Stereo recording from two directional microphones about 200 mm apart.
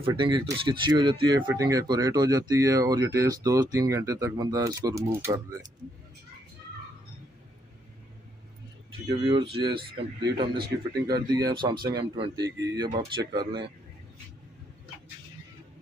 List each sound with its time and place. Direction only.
0.0 s speech: 25° right (ahead or behind)
9.1 s speech: 25° right (ahead or behind)